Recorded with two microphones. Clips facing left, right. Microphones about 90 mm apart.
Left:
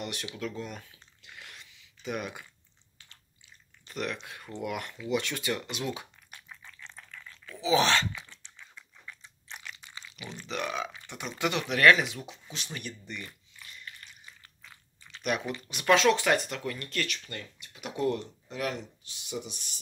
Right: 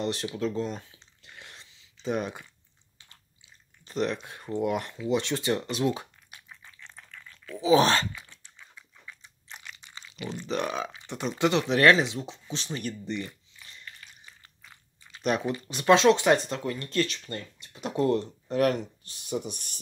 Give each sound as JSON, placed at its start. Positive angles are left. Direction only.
{"t": 0.0, "sound": "drip", "side_deg": -30}
{"t": 3.8, "sound": "speech", "side_deg": -30}
{"t": 7.6, "sound": "speech", "side_deg": -40}
{"t": 8.1, "sound": "a sound", "side_deg": -5}
{"t": 9.9, "sound": "speech", "side_deg": -35}
{"t": 12.8, "sound": "a sound", "side_deg": -30}
{"t": 15.2, "sound": "speech", "side_deg": -30}
{"t": 18.5, "sound": "speech", "side_deg": -50}